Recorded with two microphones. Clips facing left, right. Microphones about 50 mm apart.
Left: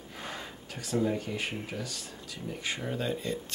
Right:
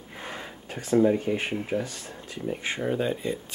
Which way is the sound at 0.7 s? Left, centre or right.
Right.